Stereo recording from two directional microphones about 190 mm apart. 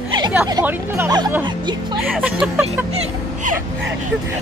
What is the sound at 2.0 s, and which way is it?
Music, 10° right (ahead or behind).